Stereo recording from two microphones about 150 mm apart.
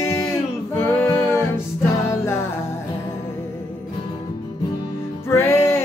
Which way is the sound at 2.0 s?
15° left (ahead or behind).